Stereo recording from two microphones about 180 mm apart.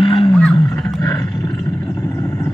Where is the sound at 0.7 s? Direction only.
5° left (ahead or behind).